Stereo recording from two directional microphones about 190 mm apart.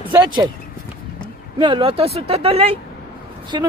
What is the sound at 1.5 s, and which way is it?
Speech, 25° right (ahead or behind).